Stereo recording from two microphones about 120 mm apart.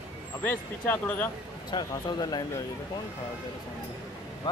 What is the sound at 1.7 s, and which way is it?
Speech, 35° left (ahead or behind).